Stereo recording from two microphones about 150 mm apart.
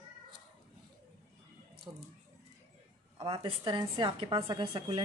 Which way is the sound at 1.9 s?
20° right (ahead or behind).